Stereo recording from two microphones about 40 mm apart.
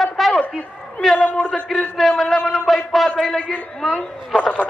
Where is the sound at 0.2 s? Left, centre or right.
Centre.